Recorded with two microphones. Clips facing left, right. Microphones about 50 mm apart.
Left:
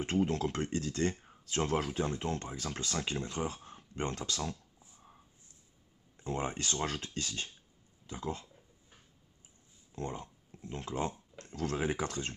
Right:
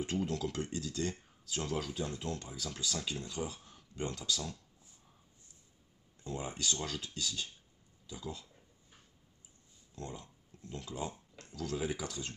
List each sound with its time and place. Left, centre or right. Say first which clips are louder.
0.0 s speech: left 4 dB; left
6.2 s speech: left 3 dB; left
10.2 s speech: left 5 dB; left